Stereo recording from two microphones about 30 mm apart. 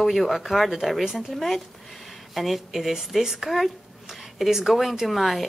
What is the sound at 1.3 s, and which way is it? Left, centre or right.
Speech, centre.